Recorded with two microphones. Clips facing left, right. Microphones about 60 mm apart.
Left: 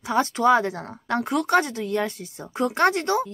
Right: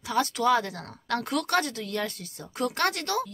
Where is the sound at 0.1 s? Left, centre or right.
Left.